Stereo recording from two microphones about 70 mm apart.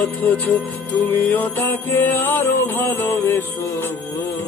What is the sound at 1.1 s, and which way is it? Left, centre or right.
Music, left.